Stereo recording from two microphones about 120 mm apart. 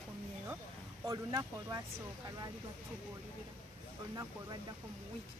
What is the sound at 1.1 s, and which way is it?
Speech, 30° right (ahead or behind).